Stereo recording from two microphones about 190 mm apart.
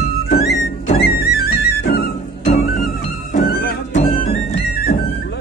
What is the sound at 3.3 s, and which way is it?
Music, 55° left (ahead or behind).